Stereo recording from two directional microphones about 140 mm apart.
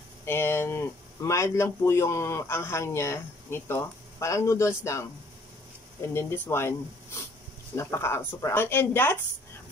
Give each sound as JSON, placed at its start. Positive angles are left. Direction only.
{"t": 0.2, "sound": "speech", "side_deg": 15}
{"t": 6.1, "sound": "speech", "side_deg": 15}
{"t": 7.7, "sound": "speech", "side_deg": 20}